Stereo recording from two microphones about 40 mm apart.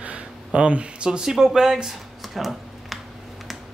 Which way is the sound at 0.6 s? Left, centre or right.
Right.